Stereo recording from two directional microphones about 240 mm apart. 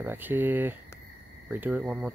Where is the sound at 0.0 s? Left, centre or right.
Centre.